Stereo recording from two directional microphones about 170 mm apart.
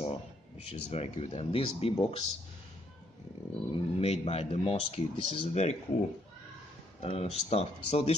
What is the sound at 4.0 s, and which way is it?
Speech, 35° left (ahead or behind).